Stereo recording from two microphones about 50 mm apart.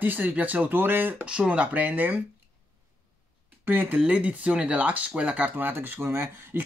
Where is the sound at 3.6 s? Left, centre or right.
Right.